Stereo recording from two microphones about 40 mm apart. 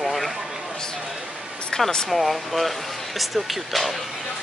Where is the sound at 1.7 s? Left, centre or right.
Centre.